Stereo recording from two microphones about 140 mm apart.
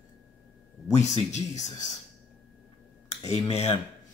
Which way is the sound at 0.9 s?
55° left (ahead or behind).